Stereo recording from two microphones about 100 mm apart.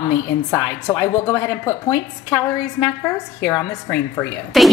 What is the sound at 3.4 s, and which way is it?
Speech, 25° left (ahead or behind).